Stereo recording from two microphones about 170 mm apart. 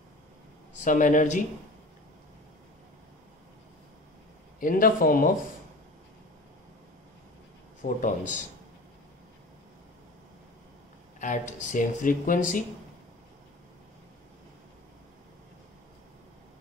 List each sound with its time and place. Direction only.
0.8 s speech: 50° left (ahead or behind)
4.6 s a man's voice: 55° left (ahead or behind)
7.8 s speech: 45° left (ahead or behind)
11.1 s speech: 45° left (ahead or behind)